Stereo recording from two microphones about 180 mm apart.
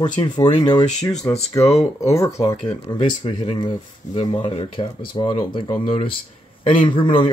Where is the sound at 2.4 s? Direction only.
20° left (ahead or behind).